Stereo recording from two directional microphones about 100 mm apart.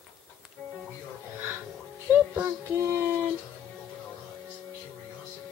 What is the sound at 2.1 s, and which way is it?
Child singing, 20° right (ahead or behind).